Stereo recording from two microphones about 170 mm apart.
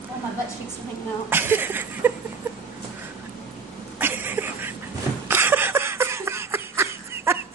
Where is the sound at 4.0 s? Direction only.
10° right (ahead or behind).